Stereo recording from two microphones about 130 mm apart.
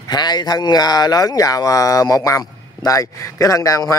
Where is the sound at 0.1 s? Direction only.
35° left (ahead or behind).